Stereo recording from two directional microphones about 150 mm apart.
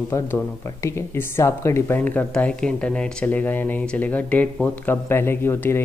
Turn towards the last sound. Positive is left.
turn(degrees=15)  # may be behind; listen again after turning